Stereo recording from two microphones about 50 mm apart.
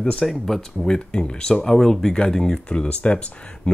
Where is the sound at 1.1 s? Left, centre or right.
Centre.